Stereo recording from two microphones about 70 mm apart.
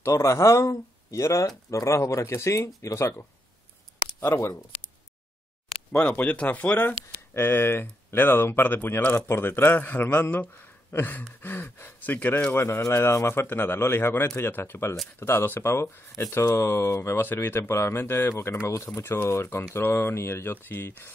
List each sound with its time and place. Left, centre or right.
0.0 s speech: left
5.9 s speech: centre
10.9 s a sound: left
11.1 s speech: left
12.5 s speech: left